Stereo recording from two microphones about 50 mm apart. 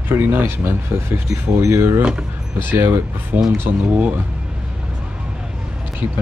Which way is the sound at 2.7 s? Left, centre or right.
Right.